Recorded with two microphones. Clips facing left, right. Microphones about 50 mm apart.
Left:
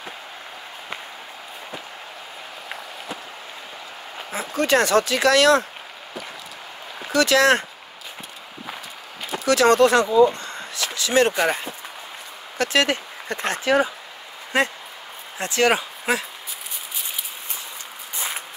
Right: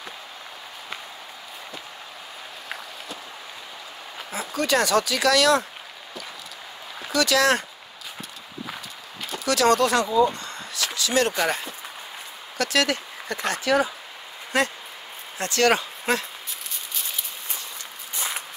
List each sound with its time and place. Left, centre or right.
4.3 s speech: left
7.1 s speech: left
9.4 s speech: left
10.1 s a sound: left
11.0 s speech: left; by 16.3 s centre
18.1 s walk: centre